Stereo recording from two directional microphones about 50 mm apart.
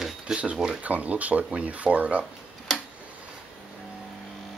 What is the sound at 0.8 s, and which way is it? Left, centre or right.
Speech, right.